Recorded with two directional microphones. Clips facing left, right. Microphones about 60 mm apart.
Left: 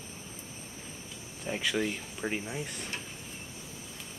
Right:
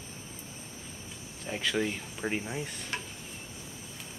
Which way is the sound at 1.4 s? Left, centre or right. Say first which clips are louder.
Even; centre.